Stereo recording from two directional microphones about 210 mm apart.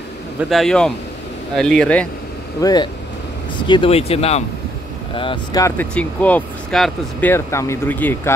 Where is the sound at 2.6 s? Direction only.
20° left (ahead or behind).